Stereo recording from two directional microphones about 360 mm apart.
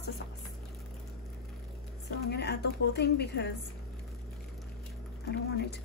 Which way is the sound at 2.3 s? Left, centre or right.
Left.